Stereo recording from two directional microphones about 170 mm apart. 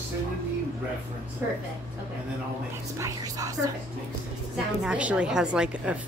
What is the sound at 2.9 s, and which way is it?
Speech, 20° right (ahead or behind).